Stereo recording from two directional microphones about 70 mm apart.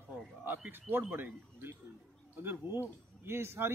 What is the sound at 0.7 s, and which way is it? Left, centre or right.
Speech, right.